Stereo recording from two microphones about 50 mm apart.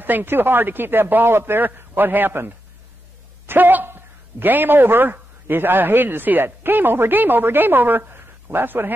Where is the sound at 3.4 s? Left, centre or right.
Right.